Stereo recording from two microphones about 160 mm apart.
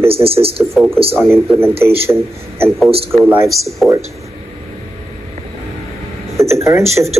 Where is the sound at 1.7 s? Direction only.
35° right (ahead or behind).